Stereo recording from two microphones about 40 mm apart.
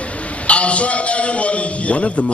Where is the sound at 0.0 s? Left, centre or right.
Left.